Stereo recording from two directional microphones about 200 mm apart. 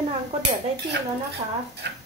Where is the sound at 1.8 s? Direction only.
55° right (ahead or behind).